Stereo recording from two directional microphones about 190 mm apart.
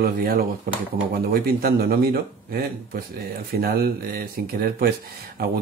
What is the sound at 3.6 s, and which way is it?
Speech, 50° right (ahead or behind).